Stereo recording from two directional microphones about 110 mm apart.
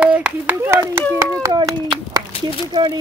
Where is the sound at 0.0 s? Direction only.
10° right (ahead or behind).